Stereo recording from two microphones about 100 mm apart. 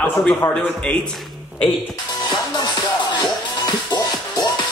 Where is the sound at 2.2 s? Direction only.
40° left (ahead or behind).